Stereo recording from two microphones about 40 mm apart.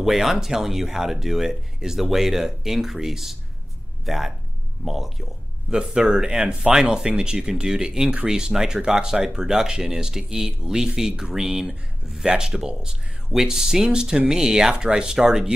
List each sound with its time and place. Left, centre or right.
0.0 s speech: centre
5.7 s speech: right